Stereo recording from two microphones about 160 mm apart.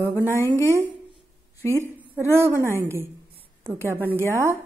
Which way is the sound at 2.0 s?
15° right (ahead or behind).